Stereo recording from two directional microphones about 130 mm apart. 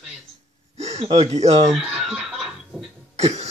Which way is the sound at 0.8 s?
55° right (ahead or behind).